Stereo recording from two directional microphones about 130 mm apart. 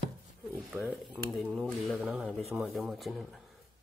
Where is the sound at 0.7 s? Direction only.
20° right (ahead or behind).